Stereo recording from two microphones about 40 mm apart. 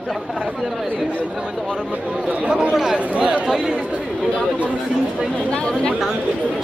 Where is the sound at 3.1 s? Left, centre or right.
Right.